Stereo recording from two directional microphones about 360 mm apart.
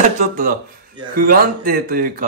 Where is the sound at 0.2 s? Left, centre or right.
Right.